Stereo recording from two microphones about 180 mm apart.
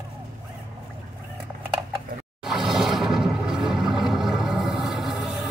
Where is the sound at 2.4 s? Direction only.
Centre (ahead or behind).